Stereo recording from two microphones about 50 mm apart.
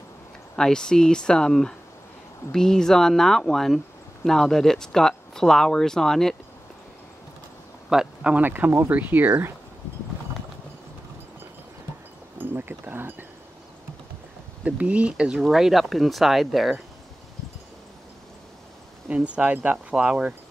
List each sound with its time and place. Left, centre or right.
0.6 s speech: centre
7.9 s speech: centre
8.4 s speech: right
12.4 s a sound: right
14.6 s speech: right
15.4 s speech: centre
19.0 s speech: right